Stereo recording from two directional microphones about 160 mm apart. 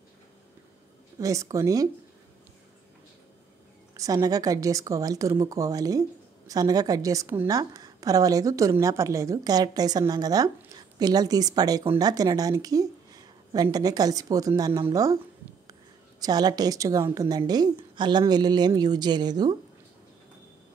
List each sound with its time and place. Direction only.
1.2 s speech: 20° right (ahead or behind)
3.9 s speech: 20° right (ahead or behind)
16.2 s speech: 25° right (ahead or behind)